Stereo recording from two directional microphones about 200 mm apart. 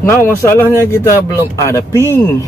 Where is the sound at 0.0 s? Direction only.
15° left (ahead or behind).